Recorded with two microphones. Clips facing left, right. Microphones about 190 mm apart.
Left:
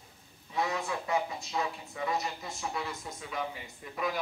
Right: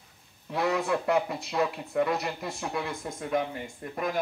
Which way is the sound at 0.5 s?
65° right (ahead or behind).